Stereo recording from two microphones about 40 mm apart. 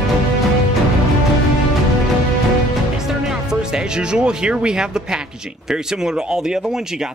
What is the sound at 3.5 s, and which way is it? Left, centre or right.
Speech, centre.